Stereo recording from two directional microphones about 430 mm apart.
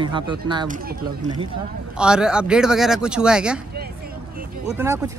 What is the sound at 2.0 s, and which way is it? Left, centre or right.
Speech, centre.